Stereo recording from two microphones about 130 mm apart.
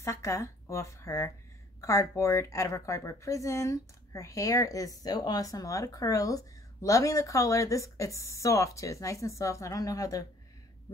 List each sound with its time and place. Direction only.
0.0 s speech: 20° left (ahead or behind)